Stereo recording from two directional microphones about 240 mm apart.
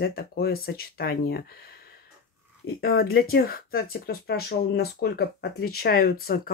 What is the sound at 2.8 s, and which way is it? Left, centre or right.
Speech, left.